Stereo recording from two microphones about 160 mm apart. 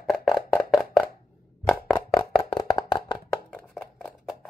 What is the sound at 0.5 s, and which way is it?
Wood block, centre (ahead or behind).